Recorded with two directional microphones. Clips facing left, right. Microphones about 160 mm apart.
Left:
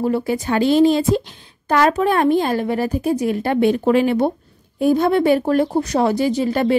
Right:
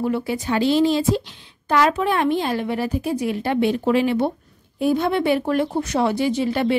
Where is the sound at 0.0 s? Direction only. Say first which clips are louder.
Left 3 dB; 40° left (ahead or behind).